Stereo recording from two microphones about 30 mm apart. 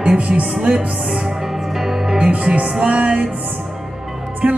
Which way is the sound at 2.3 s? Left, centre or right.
Right.